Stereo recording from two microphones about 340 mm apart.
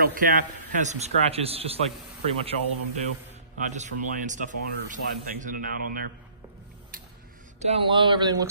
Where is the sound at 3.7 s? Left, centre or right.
Right.